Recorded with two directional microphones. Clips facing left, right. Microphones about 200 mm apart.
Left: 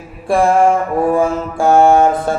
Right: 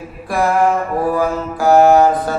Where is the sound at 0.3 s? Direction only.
30° left (ahead or behind).